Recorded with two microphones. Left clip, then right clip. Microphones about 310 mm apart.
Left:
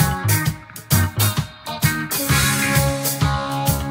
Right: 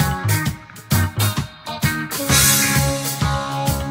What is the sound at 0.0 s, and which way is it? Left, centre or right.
Music, centre.